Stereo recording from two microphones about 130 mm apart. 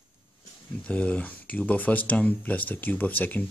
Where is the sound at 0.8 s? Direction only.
10° left (ahead or behind).